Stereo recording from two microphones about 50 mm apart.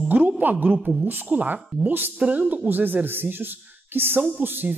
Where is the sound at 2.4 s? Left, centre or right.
Right.